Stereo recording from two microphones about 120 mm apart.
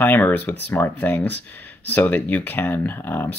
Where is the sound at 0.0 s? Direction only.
15° left (ahead or behind).